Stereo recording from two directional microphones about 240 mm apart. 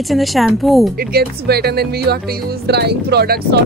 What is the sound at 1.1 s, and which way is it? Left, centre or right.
Speech, right.